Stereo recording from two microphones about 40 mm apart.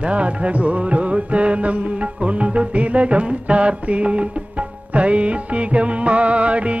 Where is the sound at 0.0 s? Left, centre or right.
Right.